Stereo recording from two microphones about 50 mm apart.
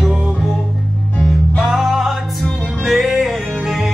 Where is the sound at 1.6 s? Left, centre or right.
Centre.